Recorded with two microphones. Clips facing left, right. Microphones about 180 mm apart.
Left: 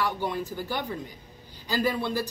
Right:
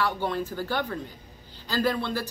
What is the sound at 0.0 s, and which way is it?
A man's voice, 15° left (ahead or behind).